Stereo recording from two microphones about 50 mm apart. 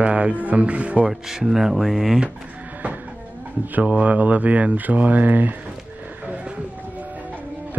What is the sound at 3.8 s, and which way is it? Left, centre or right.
Speech, right.